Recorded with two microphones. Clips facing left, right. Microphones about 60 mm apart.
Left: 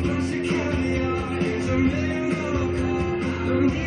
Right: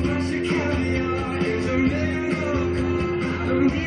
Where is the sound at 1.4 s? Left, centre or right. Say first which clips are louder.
Right 1 dB; right.